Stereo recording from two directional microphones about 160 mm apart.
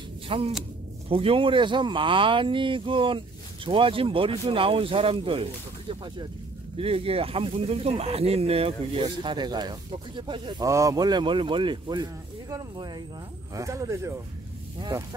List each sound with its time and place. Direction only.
0.3 s speech: 35° right (ahead or behind)
6.8 s speech: 35° right (ahead or behind)